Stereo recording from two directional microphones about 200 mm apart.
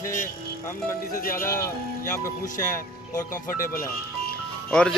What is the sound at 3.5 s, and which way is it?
Speech, 45° left (ahead or behind).